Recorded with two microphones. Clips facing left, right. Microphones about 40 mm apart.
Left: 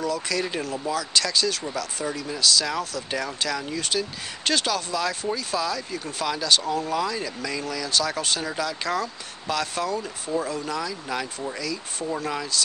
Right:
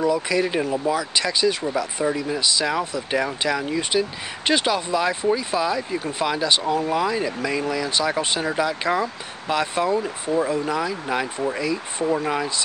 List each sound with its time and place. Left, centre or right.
0.0 s speech: centre